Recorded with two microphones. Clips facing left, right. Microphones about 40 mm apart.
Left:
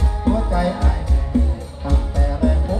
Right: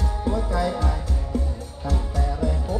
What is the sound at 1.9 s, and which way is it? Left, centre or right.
Music, left.